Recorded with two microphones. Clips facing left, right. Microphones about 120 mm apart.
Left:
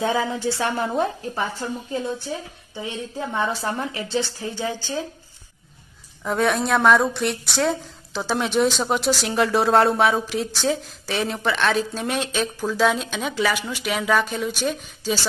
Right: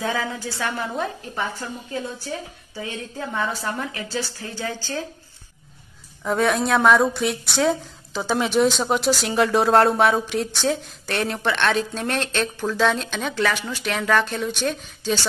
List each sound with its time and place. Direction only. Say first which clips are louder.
0.0 s a woman's voice: left 4 dB; 25° left (ahead or behind)
2.7 s a woman's voice: left 2 dB; 20° left (ahead or behind)
6.2 s a woman's voice: right 1 dB; centre (ahead or behind)